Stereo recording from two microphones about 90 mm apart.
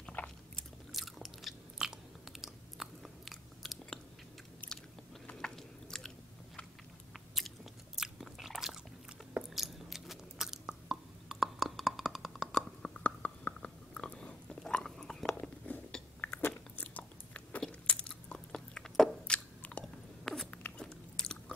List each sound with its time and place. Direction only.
0.0 s biting: 10° left (ahead or behind)
0.9 s biting: centre (ahead or behind)
4.6 s biting: 15° left (ahead or behind)
9.6 s chewing: centre (ahead or behind)
15.6 s biting: 15° left (ahead or behind)
20.5 s dog: 15° left (ahead or behind)
20.8 s biting: 5° left (ahead or behind)